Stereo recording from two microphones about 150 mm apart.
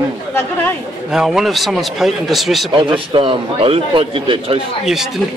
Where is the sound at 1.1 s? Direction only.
Centre (ahead or behind).